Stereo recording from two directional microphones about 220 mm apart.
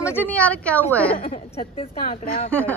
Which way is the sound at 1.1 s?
30° left (ahead or behind).